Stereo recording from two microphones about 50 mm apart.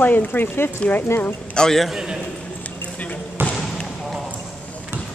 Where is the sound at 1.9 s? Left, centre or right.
Centre.